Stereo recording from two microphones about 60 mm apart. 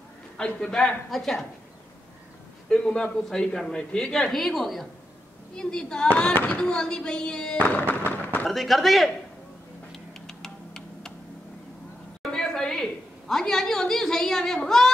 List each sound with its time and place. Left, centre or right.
0.4 s speech: centre
2.7 s speech: centre
5.6 s speech: centre
7.5 s speech: left
8.5 s speech: centre
9.9 s tick-tock: centre
12.2 s a woman's voice: centre